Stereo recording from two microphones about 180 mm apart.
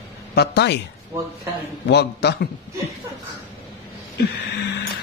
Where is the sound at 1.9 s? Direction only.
65° left (ahead or behind).